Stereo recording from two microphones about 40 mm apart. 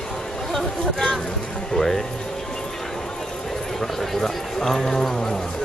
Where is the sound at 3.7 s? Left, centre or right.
Centre.